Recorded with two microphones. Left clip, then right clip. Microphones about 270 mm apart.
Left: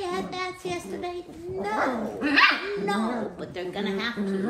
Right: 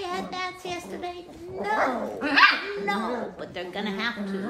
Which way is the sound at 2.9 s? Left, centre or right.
Right.